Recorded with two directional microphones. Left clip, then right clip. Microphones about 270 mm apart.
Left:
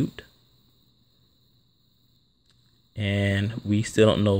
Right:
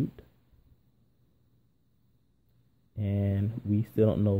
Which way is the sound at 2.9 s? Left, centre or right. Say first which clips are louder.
Left 8 dB; centre.